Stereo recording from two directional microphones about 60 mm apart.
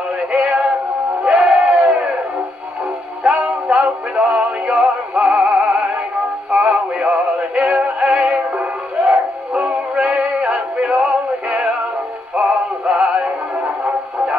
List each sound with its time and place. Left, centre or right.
0.3 s synthetic singing: centre
1.2 s a sound: centre
3.3 s synthetic singing: right